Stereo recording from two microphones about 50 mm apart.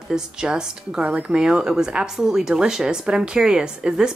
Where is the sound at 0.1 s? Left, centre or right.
Centre.